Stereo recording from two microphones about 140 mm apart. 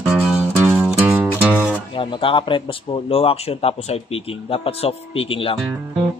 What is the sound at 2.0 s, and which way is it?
Speech, 35° left (ahead or behind).